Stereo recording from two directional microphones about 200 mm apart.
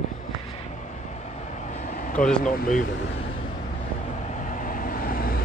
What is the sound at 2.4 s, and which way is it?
Speech, 40° left (ahead or behind).